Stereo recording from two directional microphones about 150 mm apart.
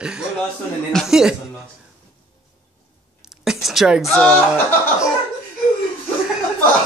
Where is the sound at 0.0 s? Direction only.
5° right (ahead or behind).